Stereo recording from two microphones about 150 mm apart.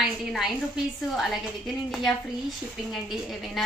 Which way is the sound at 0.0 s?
Centre (ahead or behind).